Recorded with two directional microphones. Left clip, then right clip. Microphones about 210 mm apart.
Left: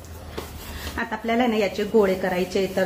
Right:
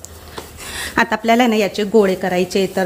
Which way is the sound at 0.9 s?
50° right (ahead or behind).